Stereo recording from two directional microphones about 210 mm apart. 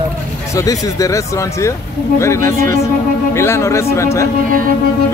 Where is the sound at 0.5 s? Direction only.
15° left (ahead or behind).